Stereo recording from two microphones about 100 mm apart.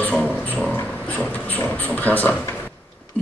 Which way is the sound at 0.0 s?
15° left (ahead or behind).